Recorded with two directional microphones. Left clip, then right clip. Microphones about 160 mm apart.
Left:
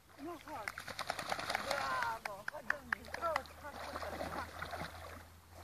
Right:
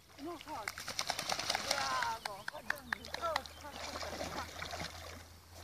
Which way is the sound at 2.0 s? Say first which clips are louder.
Right 1 dB; 25° left (ahead or behind).